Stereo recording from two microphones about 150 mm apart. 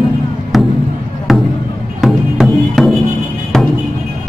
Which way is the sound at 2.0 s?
Centre (ahead or behind).